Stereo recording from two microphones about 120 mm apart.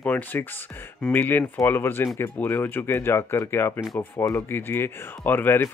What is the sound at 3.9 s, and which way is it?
Speech, 30° left (ahead or behind).